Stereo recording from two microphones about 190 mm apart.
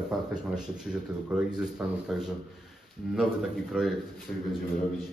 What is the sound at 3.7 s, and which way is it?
Speech, 5° right (ahead or behind).